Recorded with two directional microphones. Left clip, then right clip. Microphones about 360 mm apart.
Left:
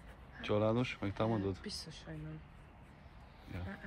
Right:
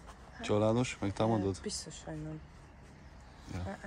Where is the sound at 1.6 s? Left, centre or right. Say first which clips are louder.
Right 5 dB; right.